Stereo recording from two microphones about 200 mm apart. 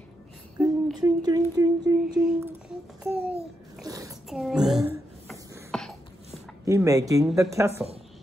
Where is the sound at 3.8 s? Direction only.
15° right (ahead or behind).